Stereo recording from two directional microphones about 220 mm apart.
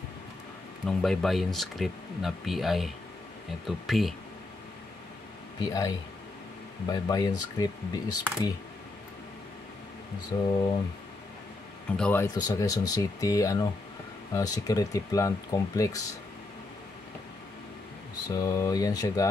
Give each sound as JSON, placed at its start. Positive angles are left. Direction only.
{"t": 0.8, "sound": "speech", "side_deg": 0}
{"t": 5.6, "sound": "speech", "side_deg": 15}
{"t": 10.3, "sound": "speech", "side_deg": 15}
{"t": 12.0, "sound": "speech", "side_deg": 10}
{"t": 18.2, "sound": "speech", "side_deg": 15}